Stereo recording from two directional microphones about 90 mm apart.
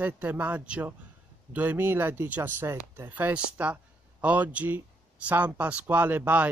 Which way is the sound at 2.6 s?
35° right (ahead or behind).